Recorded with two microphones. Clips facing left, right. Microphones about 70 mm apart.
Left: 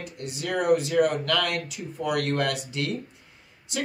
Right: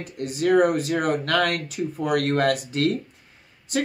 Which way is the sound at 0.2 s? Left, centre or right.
Right.